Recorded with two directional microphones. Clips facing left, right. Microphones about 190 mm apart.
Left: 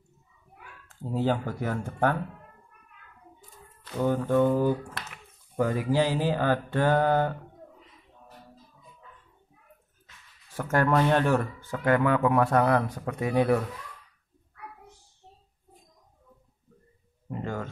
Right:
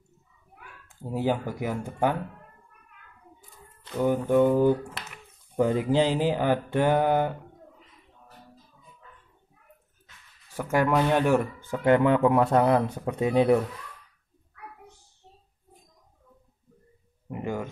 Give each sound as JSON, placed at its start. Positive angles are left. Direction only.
{"t": 0.8, "sound": "speech", "side_deg": -10}
{"t": 3.9, "sound": "speech", "side_deg": -15}
{"t": 10.5, "sound": "speech", "side_deg": -15}
{"t": 17.3, "sound": "speech", "side_deg": -15}